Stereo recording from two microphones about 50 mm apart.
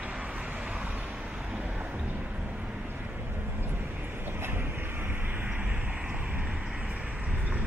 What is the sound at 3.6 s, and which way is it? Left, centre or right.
Vehicle, right.